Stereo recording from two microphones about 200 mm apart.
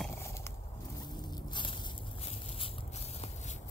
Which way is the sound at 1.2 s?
25° left (ahead or behind).